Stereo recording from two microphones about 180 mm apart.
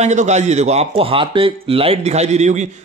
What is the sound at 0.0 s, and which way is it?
A man's voice, 40° right (ahead or behind).